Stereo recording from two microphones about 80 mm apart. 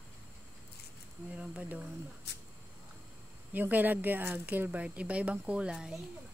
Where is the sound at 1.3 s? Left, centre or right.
Centre.